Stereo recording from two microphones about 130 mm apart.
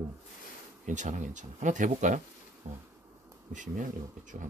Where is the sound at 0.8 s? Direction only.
75° right (ahead or behind).